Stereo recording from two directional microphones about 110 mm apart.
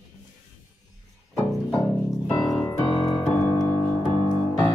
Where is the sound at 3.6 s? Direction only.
20° left (ahead or behind).